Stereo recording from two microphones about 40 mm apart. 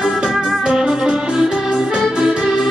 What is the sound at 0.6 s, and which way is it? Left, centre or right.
Music, centre.